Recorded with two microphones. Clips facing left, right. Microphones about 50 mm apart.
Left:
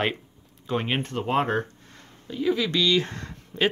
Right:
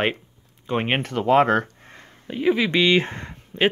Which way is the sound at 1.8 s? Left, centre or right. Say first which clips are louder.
Right 4 dB; right.